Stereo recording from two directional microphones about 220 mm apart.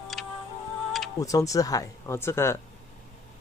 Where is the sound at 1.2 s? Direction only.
15° left (ahead or behind).